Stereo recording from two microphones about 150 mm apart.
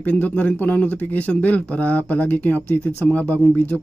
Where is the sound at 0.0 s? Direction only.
10° left (ahead or behind).